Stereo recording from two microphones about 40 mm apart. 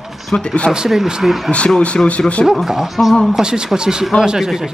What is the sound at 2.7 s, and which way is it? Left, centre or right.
Speech, centre.